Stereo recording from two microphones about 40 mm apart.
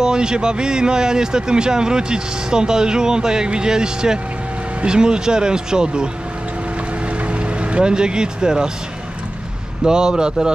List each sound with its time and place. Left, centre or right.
0.0 s speech: centre
7.2 s music: right
9.8 s speech: centre